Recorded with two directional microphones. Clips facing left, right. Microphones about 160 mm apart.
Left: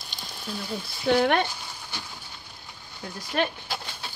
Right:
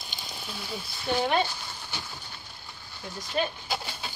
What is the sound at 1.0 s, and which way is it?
Speech, 65° left (ahead or behind).